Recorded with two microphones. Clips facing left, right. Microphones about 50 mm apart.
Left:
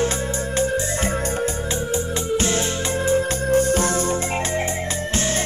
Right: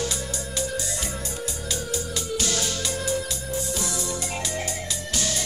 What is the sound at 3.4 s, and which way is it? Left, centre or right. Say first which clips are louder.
Music: left 11 dB; left.